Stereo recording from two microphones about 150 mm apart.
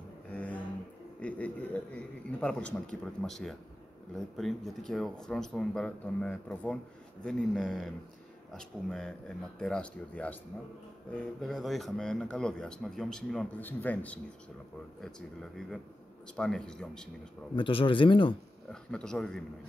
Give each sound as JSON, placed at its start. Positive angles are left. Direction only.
{"t": 0.3, "sound": "a sound", "side_deg": 10}
{"t": 1.2, "sound": "a man's voice", "side_deg": 10}
{"t": 13.6, "sound": "a man's voice", "side_deg": 10}
{"t": 17.6, "sound": "speech", "side_deg": 35}
{"t": 18.7, "sound": "a man's voice", "side_deg": 5}